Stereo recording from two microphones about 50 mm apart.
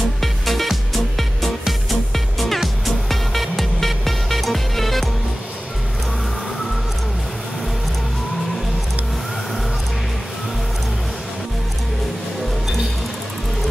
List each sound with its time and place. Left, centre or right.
0.2 s music: centre